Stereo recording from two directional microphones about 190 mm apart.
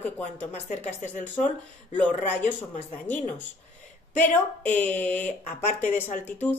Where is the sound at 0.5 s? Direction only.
40° left (ahead or behind).